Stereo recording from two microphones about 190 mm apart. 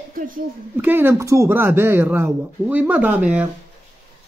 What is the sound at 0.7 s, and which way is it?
Speech, 10° right (ahead or behind).